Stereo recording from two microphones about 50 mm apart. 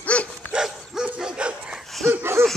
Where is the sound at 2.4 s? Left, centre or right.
Right.